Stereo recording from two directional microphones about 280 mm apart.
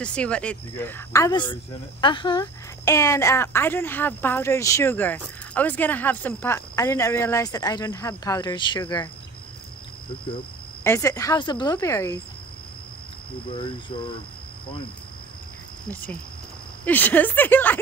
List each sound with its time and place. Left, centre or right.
0.0 s speech: centre
10.8 s speech: centre
13.5 s speech: centre
15.9 s speech: centre